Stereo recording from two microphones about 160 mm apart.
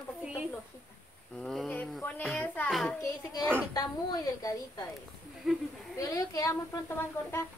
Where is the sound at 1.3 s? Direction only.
5° left (ahead or behind).